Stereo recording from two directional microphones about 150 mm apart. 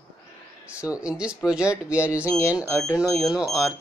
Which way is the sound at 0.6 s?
10° right (ahead or behind).